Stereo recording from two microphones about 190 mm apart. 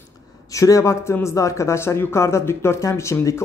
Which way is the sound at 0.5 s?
15° left (ahead or behind).